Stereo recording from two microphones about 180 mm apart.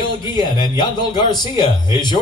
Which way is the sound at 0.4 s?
25° left (ahead or behind).